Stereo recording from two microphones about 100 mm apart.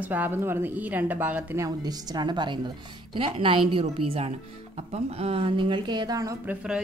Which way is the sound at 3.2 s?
65° right (ahead or behind).